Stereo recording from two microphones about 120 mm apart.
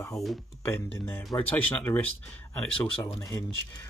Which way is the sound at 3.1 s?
25° left (ahead or behind).